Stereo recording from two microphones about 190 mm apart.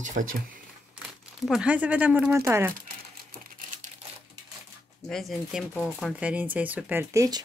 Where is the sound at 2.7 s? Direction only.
50° right (ahead or behind).